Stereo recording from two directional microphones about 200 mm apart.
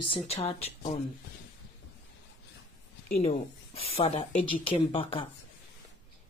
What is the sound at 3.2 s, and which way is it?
Speech, 30° left (ahead or behind).